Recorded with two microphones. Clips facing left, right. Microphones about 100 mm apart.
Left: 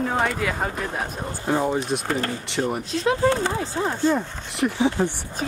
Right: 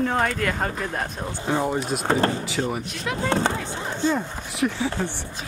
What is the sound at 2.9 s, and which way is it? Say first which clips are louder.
Speech: left 7 dB; 30° left (ahead or behind).